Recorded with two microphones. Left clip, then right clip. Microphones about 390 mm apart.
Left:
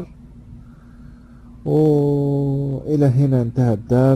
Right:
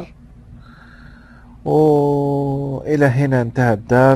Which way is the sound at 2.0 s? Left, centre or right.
Right.